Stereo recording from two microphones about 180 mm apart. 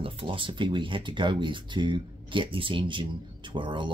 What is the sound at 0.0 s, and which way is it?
Speech, 30° right (ahead or behind).